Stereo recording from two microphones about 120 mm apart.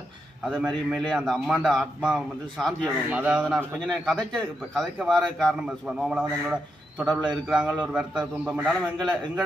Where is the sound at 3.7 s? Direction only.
5° left (ahead or behind).